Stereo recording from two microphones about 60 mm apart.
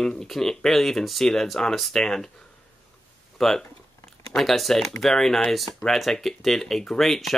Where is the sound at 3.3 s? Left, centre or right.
Centre.